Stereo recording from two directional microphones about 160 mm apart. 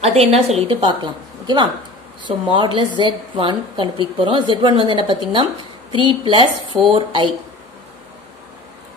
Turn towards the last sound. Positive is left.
turn(degrees=-35)  # may be behind; listen again after turning